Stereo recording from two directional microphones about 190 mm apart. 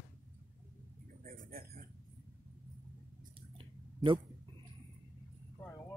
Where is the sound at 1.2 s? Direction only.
45° right (ahead or behind).